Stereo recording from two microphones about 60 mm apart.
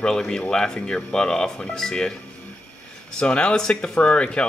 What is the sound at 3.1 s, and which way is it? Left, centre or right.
Speech, centre.